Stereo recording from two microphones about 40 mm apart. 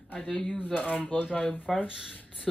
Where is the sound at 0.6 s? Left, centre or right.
Left.